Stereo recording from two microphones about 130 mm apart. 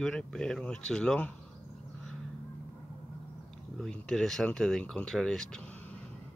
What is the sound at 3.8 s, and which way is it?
Speech, 5° left (ahead or behind).